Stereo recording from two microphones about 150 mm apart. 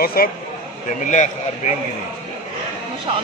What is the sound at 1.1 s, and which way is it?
Speech, 55° left (ahead or behind).